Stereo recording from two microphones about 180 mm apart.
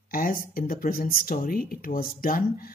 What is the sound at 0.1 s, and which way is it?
A man's voice, 50° left (ahead or behind).